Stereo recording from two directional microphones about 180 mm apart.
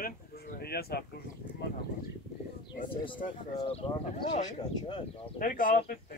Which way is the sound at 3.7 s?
35° left (ahead or behind).